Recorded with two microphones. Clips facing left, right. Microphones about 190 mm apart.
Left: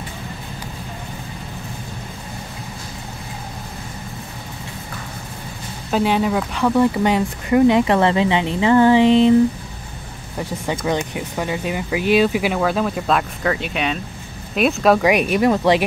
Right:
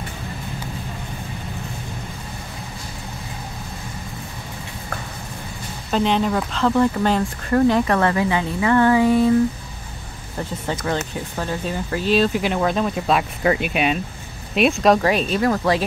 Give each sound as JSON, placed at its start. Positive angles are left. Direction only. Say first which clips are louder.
{"t": 5.9, "sound": "speech", "louder": "left 1 dB", "side_deg": 5}
{"t": 10.7, "sound": "speech", "louder": "left 3 dB", "side_deg": 15}
{"t": 14.5, "sound": "speech", "louder": "even", "side_deg": 0}
{"t": 15.0, "sound": "speech", "louder": "left 3 dB", "side_deg": 15}